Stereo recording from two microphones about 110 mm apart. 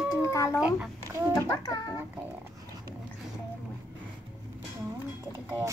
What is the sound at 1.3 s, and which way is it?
Speech, 30° left (ahead or behind).